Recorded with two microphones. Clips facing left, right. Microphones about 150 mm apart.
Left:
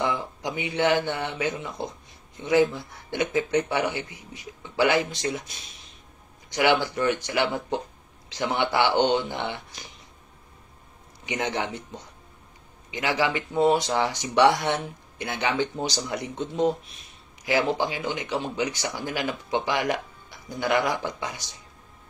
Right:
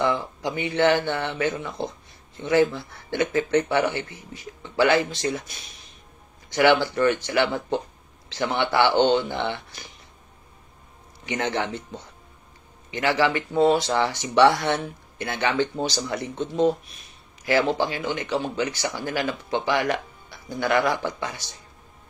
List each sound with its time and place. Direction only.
0.0 s speech: 15° left (ahead or behind)
11.2 s speech: 15° left (ahead or behind)
12.9 s speech: 15° left (ahead or behind)
17.5 s speech: 15° left (ahead or behind)